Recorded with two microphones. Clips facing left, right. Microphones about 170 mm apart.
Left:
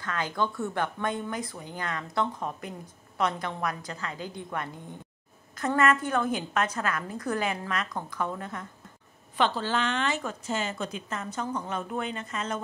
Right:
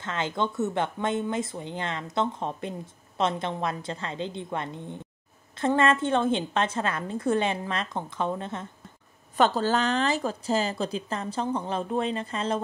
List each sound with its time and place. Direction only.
0.0 s a woman's voice: 25° right (ahead or behind)
9.4 s a woman's voice: 40° right (ahead or behind)